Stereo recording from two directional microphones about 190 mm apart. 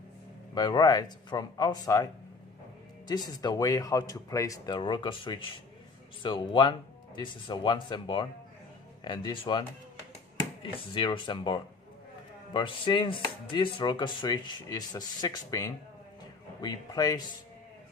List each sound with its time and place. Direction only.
0.6 s speech: 20° left (ahead or behind)
3.1 s speech: 20° left (ahead or behind)